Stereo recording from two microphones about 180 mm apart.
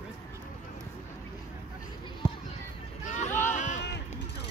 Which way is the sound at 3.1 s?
45° left (ahead or behind).